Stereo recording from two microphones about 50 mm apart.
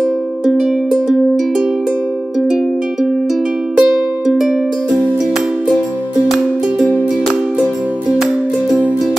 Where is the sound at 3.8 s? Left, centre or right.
Centre.